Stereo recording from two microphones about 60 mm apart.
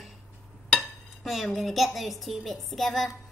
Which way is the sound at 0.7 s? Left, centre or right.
Centre.